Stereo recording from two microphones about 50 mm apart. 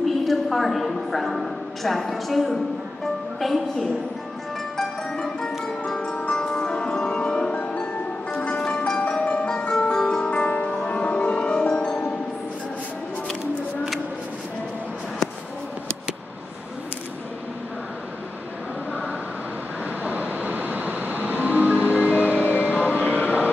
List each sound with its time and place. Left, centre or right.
0.0 s a woman's voice: centre
4.7 s music: centre
6.3 s music: centre
8.5 s music: centre
9.2 s music: left
11.5 s music: centre
19.8 s train: right
22.9 s vehicle: right